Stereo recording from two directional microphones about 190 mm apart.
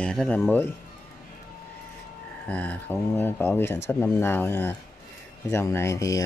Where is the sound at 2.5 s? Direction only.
10° left (ahead or behind).